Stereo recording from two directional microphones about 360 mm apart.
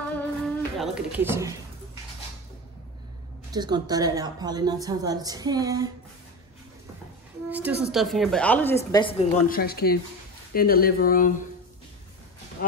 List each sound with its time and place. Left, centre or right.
0.1 s music: centre
3.5 s a woman's voice: centre
7.4 s a woman's voice: centre; by 11.3 s left